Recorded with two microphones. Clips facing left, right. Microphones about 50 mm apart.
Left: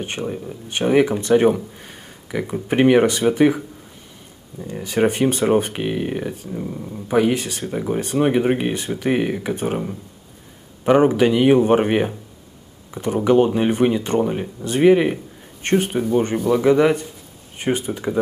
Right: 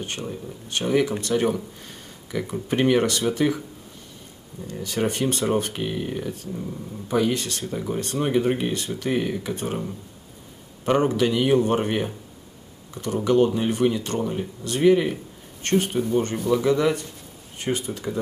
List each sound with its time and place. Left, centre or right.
0.0 s speech: left
4.6 s speech: left
6.3 s speech: centre